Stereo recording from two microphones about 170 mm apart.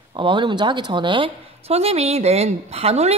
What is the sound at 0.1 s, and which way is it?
A woman's voice, 30° right (ahead or behind).